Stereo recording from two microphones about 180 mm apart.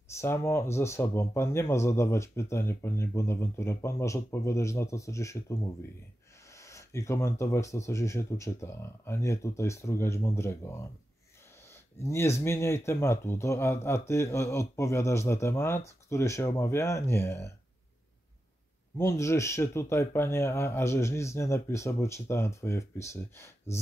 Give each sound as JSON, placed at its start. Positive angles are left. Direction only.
{"t": 0.2, "sound": "speech", "side_deg": 15}
{"t": 12.0, "sound": "speech", "side_deg": 15}
{"t": 18.9, "sound": "speech", "side_deg": 15}